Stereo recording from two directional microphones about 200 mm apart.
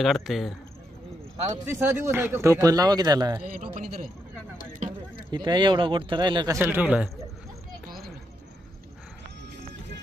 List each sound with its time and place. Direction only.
0.0 s speech: centre (ahead or behind)
1.7 s speech: 10° right (ahead or behind)
5.3 s a man's voice: 20° right (ahead or behind)